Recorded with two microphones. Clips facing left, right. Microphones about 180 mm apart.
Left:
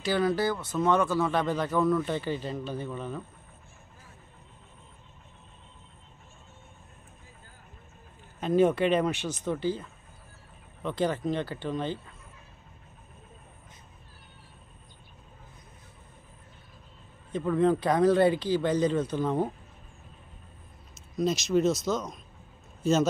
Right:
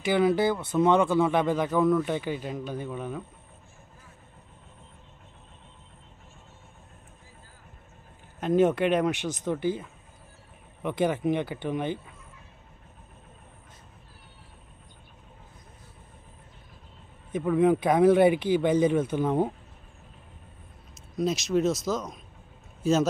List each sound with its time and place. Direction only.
0.7 s speech: 15° right (ahead or behind)
8.4 s speech: 15° right (ahead or behind)
17.3 s speech: 10° right (ahead or behind)
21.2 s speech: centre (ahead or behind)